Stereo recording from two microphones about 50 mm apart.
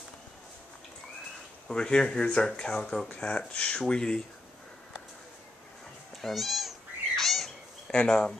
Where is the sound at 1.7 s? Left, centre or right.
Centre.